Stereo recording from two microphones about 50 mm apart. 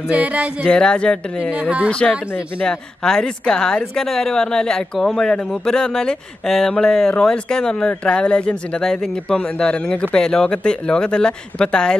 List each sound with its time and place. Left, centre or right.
0.1 s speech: right
0.7 s speech: centre
1.4 s speech: right
2.6 s speech: centre
8.8 s speech: centre
9.6 s speech: centre